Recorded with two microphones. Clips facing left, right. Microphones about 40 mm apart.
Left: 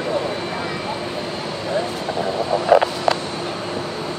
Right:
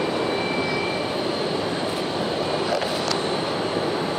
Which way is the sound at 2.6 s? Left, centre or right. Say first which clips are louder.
Left 8 dB; left.